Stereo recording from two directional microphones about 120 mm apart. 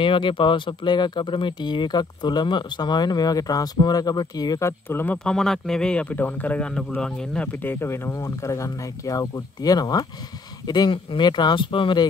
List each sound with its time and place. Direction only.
0.0 s speech: 45° left (ahead or behind)